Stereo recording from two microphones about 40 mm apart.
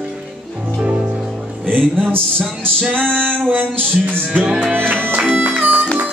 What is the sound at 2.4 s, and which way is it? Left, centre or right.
Music, centre.